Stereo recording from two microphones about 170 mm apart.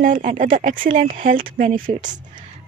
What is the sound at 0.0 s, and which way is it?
Speech, 50° right (ahead or behind).